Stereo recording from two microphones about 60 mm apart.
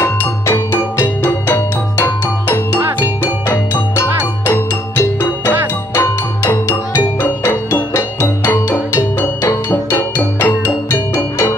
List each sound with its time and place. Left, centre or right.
0.0 s music: left
8.5 s music: left